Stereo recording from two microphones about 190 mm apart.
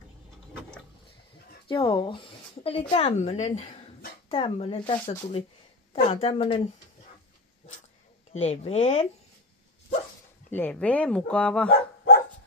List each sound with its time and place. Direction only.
1.7 s speech: 25° left (ahead or behind)
8.3 s speech: 35° left (ahead or behind)
10.5 s speech: 10° left (ahead or behind)